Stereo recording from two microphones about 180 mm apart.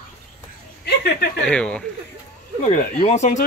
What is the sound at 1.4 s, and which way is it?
Speech, 5° left (ahead or behind).